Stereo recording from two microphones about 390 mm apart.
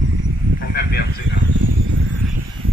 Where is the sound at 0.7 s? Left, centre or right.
Left.